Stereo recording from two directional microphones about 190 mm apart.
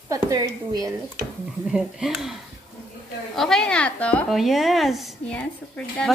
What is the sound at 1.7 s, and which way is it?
Speech, centre (ahead or behind).